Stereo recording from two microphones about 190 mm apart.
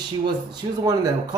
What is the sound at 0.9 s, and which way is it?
Speech, 20° right (ahead or behind).